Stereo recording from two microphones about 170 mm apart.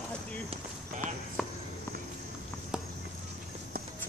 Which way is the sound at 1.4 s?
5° right (ahead or behind).